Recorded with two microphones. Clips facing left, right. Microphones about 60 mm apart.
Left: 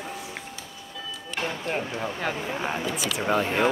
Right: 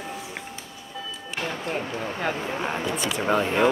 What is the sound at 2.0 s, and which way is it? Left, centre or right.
Speech, right.